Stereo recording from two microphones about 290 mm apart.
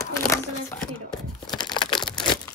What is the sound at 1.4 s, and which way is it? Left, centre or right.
Crushing, centre.